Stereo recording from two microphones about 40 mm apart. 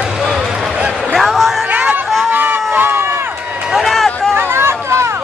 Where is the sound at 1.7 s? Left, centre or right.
Right.